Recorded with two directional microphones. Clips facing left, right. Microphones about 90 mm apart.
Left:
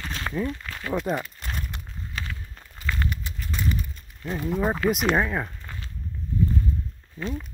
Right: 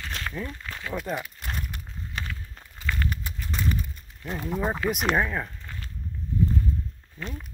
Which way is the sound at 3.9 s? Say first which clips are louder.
Left 3 dB; centre (ahead or behind).